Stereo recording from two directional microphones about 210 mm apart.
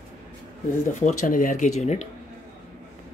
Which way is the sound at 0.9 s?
40° left (ahead or behind).